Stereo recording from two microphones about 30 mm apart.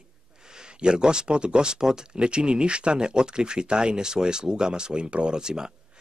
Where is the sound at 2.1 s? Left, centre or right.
Right.